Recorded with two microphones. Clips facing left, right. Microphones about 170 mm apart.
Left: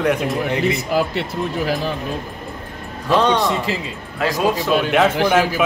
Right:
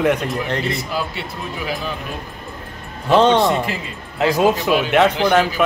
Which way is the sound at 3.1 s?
25° right (ahead or behind).